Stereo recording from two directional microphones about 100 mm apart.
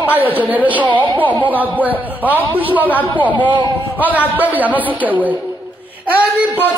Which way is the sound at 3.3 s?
50° right (ahead or behind).